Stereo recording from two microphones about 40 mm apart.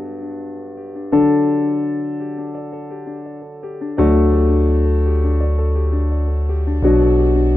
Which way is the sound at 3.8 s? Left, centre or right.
Centre.